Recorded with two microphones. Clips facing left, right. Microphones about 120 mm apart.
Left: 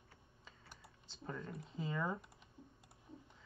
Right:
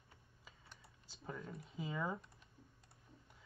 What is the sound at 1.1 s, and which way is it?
Speech, 5° right (ahead or behind).